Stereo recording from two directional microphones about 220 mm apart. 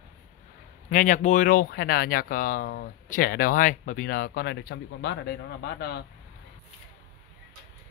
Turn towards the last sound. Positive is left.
turn(degrees=45)  # may be behind; listen again after turning